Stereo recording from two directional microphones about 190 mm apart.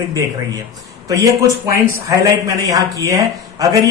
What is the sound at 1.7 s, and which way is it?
Speech, 15° right (ahead or behind).